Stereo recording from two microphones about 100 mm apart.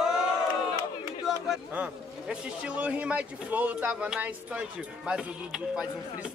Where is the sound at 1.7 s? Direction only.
10° right (ahead or behind).